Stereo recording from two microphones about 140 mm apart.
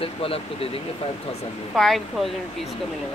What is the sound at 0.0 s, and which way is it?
Speech, 45° left (ahead or behind).